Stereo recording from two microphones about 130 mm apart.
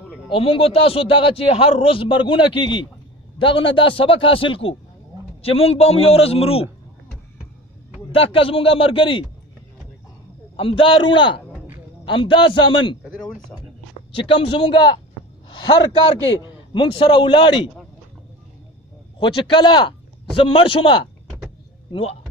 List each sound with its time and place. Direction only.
0.3 s a man's voice: 45° left (ahead or behind)
8.1 s a man's voice: 45° left (ahead or behind)
10.5 s a man's voice: 45° left (ahead or behind)
11.5 s a sound: 10° right (ahead or behind)
12.0 s a man's voice: 40° left (ahead or behind)
14.2 s a man's voice: 45° left (ahead or behind)
16.4 s a man's voice: 40° left (ahead or behind)
19.1 s a man's voice: 40° left (ahead or behind)